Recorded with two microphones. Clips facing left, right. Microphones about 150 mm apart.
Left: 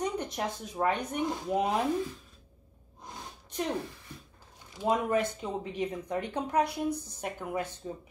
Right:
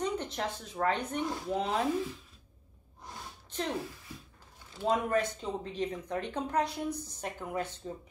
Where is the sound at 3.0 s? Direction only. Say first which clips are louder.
Left 1 dB; 15° left (ahead or behind).